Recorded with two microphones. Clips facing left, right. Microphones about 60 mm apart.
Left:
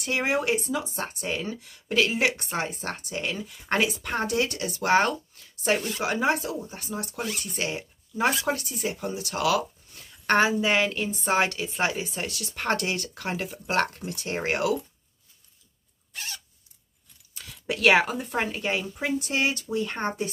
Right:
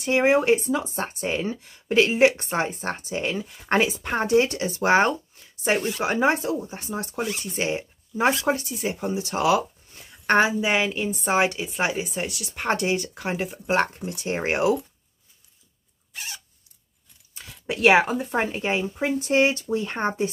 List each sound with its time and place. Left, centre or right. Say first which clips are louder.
0.0 s speech: right 6 dB; right
10.3 s speech: right 2 dB; centre
16.1 s zipper: right 1 dB; centre
17.3 s speech: right 1 dB; right